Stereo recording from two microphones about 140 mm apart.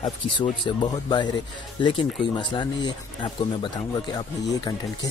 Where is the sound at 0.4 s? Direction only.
30° left (ahead or behind).